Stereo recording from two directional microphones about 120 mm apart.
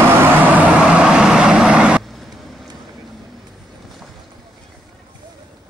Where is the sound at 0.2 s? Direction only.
15° right (ahead or behind).